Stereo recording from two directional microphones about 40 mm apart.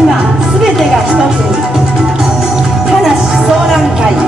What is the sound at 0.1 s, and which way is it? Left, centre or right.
Music, centre.